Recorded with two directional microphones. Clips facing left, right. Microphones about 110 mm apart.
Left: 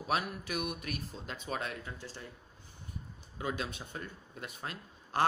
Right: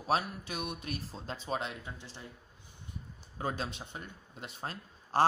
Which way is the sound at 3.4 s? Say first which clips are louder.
Right 1 dB; 35° right (ahead or behind).